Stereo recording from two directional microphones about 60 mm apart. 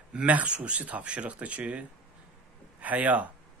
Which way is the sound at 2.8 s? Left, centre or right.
Right.